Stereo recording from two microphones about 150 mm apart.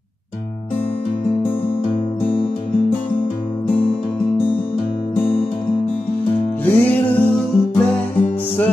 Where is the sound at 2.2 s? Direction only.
35° left (ahead or behind).